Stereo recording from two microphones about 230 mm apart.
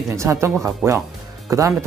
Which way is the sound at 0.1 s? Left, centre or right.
Centre.